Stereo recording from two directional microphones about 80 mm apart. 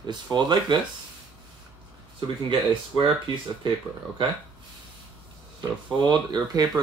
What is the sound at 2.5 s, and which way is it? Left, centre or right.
Speech, right.